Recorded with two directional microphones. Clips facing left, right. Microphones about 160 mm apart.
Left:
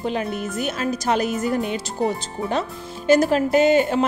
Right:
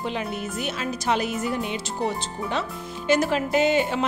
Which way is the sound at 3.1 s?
40° left (ahead or behind).